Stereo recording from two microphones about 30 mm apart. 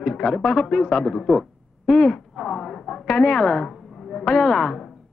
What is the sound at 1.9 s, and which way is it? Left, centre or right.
Speech, centre.